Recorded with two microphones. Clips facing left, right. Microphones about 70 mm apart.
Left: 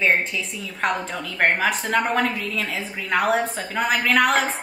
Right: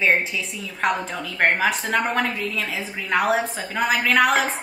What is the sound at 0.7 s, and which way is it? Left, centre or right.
A woman's voice, centre.